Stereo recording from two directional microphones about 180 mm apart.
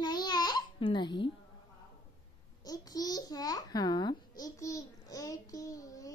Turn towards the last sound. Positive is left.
turn(degrees=20)  # may be behind; listen again after turning